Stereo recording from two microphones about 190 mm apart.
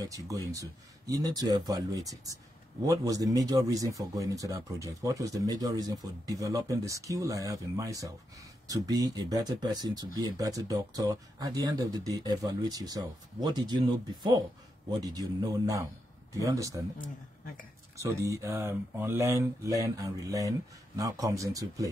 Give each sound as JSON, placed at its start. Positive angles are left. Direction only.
{"t": 0.0, "sound": "speech", "side_deg": -20}
{"t": 17.9, "sound": "speech", "side_deg": -15}